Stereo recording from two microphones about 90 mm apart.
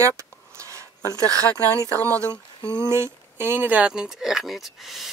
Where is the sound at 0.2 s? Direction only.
35° right (ahead or behind).